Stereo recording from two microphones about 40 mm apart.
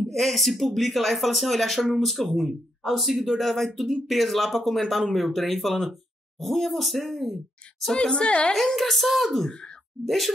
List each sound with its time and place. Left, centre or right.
0.0 s speech: centre
7.9 s a woman's voice: left
8.5 s speech: centre
9.5 s speech: left
10.0 s speech: centre